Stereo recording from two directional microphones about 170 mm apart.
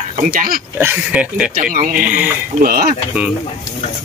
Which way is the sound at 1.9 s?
10° right (ahead or behind).